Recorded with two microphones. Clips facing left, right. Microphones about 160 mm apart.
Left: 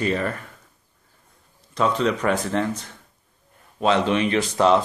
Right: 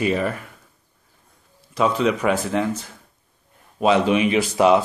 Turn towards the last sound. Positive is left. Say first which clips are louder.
# right 2 dB
turn(degrees=-10)  # may be behind; listen again after turning